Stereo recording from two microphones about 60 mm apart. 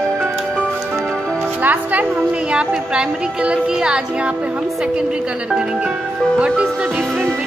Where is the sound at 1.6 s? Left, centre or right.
Right.